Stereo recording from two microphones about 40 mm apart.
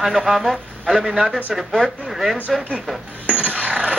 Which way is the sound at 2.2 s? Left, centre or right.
Centre.